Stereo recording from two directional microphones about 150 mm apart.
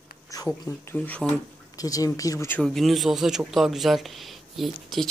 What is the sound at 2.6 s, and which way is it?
Speech, centre (ahead or behind).